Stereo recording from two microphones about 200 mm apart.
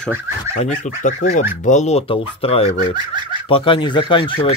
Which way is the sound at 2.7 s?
20° right (ahead or behind).